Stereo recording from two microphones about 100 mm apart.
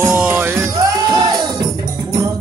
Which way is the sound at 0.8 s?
40° right (ahead or behind).